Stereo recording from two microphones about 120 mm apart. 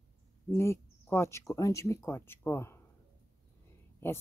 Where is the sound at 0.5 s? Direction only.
20° left (ahead or behind).